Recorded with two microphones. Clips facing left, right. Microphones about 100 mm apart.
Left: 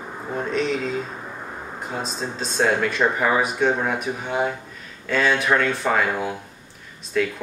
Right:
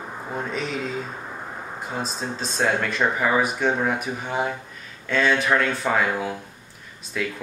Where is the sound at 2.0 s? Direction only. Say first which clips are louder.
Left 1 dB; centre (ahead or behind).